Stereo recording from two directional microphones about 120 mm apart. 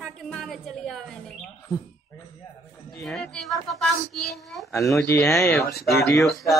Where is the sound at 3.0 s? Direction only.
Centre (ahead or behind).